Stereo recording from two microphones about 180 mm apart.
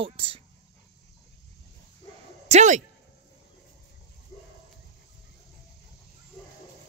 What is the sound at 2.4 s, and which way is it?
Speech, 40° right (ahead or behind).